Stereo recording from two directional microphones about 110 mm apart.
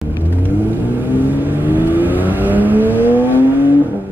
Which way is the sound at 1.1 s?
15° right (ahead or behind).